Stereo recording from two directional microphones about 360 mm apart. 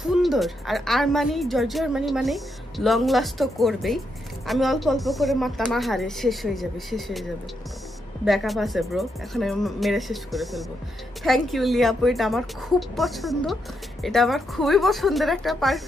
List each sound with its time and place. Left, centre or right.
0.0 s speech: centre
8.3 s speech: centre